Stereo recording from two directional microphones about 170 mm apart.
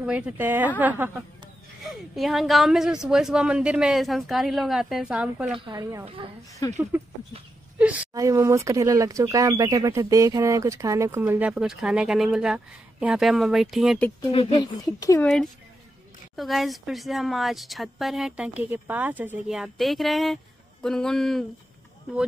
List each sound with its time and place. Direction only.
0.0 s speech: 5° right (ahead or behind)
5.7 s a woman's voice: 20° right (ahead or behind)
6.0 s a woman's voice: 30° right (ahead or behind)
6.6 s speech: 20° left (ahead or behind)
7.8 s a woman's voice: 10° right (ahead or behind)
8.1 s speech: 20° right (ahead or behind); by 14.0 s centre (ahead or behind)
14.5 s speech: 25° left (ahead or behind)
15.1 s speech: 5° left (ahead or behind)